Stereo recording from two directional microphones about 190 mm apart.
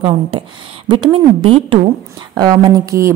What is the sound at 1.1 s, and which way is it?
A woman's voice, 30° right (ahead or behind).